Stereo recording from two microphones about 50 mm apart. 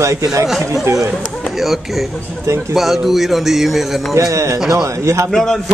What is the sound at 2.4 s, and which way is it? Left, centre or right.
Speech, right.